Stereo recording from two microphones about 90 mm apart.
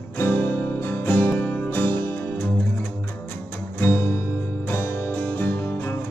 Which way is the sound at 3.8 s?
25° left (ahead or behind).